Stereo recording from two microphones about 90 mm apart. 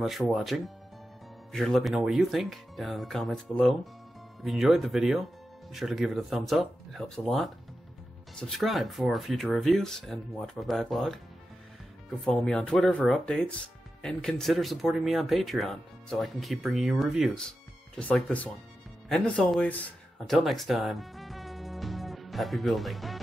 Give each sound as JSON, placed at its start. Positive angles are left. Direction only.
{"t": 0.0, "sound": "speech", "side_deg": 0}
{"t": 12.3, "sound": "speech", "side_deg": 10}
{"t": 17.4, "sound": "speech", "side_deg": 10}
{"t": 20.2, "sound": "music", "side_deg": 5}